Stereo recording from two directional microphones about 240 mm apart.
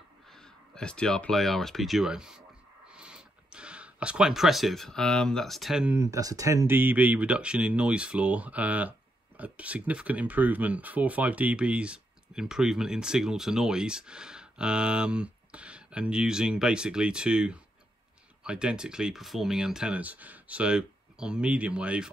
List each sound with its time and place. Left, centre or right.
0.3 s speech: centre